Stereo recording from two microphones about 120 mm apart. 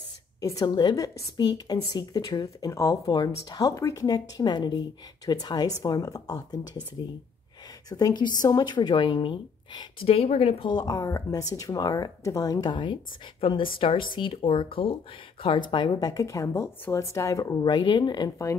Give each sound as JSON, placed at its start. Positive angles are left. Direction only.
{"t": 0.4, "sound": "speech", "side_deg": 30}
{"t": 7.9, "sound": "speech", "side_deg": 35}
{"t": 10.7, "sound": "speech", "side_deg": 35}